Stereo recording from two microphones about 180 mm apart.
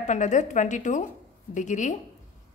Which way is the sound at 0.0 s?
40° left (ahead or behind).